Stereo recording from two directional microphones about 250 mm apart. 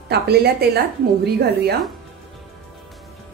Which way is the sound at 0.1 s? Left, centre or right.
Right.